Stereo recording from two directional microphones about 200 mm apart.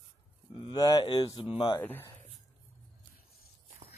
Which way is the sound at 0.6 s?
20° left (ahead or behind).